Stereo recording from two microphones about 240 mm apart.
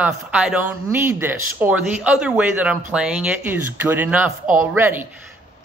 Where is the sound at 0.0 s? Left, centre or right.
Centre.